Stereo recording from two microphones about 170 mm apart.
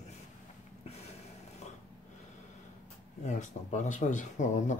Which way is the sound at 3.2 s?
45° left (ahead or behind).